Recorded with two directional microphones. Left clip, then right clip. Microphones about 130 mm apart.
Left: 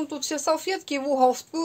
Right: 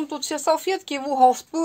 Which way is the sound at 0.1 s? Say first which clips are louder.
Right 4 dB; 40° right (ahead or behind).